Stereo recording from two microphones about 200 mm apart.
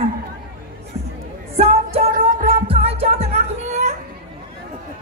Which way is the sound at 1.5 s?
30° right (ahead or behind).